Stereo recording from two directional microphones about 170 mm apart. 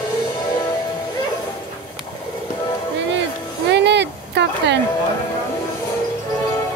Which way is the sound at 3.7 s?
85° right.